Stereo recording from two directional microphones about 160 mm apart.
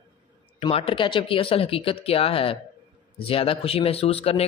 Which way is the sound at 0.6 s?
35° left (ahead or behind).